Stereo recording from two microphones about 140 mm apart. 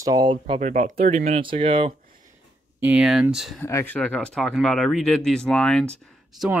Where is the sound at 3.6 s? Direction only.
15° left (ahead or behind).